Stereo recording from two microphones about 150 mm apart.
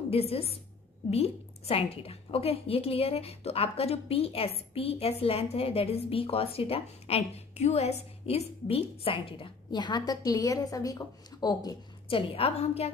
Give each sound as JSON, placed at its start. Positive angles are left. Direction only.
{"t": 0.1, "sound": "a woman's voice", "side_deg": 40}
{"t": 12.1, "sound": "a woman's voice", "side_deg": 40}